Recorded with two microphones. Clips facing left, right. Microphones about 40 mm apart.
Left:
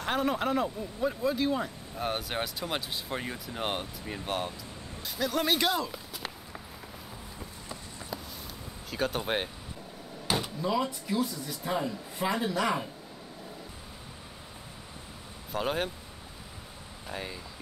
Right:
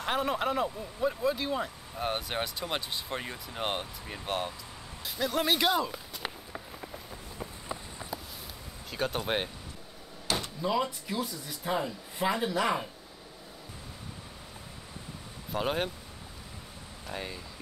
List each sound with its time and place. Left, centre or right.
0.0 s speech: centre
7.3 s run: right
8.9 s speech: centre
10.2 s door: centre
10.6 s speech: centre
15.5 s speech: centre
17.1 s speech: centre